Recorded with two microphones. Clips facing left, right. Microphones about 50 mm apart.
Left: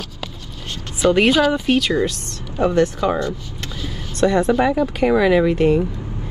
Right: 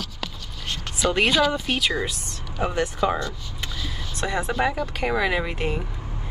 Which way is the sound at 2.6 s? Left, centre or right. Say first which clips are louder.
Left 7 dB; centre.